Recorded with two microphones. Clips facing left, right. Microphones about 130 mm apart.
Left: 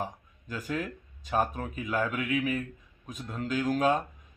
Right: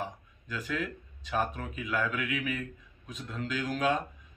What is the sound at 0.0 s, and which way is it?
Speech, 45° left (ahead or behind).